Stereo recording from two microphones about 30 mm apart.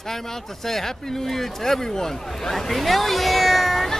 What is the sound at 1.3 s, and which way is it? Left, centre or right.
Speech, centre.